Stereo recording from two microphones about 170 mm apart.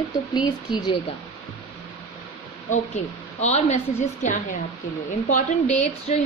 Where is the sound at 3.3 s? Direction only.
40° left (ahead or behind).